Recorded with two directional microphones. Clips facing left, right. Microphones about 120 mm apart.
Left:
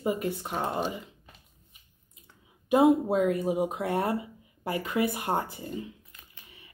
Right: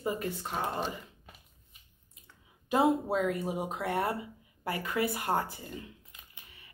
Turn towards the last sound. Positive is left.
turn(degrees=-20)  # may be behind; listen again after turning